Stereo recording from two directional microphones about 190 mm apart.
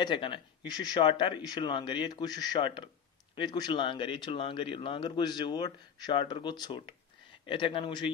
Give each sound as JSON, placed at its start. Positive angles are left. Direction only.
{"t": 0.0, "sound": "speech", "side_deg": 25}